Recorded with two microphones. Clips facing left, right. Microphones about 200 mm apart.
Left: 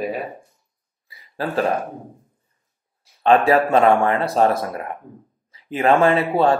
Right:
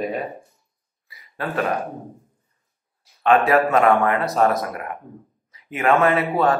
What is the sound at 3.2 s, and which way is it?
Speech, 30° left (ahead or behind).